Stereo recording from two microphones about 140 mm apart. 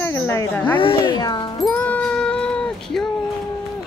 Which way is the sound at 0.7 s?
35° left (ahead or behind).